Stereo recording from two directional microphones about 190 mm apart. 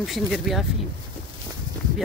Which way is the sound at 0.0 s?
Centre (ahead or behind).